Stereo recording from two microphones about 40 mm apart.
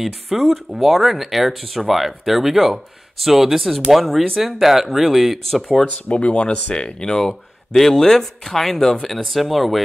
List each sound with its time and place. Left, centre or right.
0.0 s speech: centre
5.9 s speech: left
6.1 s speech: left
7.7 s speech: centre